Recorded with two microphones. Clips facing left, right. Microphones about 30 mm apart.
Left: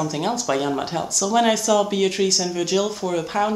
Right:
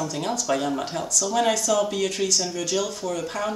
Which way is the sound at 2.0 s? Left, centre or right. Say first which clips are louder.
Left 4 dB; left.